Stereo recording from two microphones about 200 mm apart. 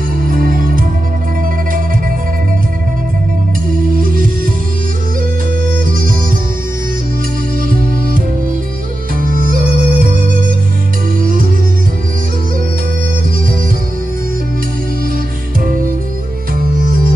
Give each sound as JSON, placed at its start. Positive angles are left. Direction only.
{"t": 0.3, "sound": "music", "side_deg": -45}
{"t": 3.9, "sound": "music", "side_deg": -45}
{"t": 5.7, "sound": "music", "side_deg": -45}
{"t": 7.7, "sound": "music", "side_deg": -45}
{"t": 16.5, "sound": "music", "side_deg": -45}